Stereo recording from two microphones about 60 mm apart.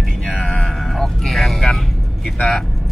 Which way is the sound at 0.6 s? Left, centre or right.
Centre.